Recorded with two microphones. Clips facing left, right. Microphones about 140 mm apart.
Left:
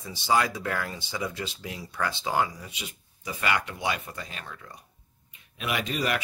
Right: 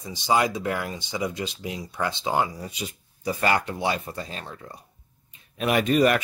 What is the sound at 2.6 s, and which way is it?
Speech, 40° right (ahead or behind).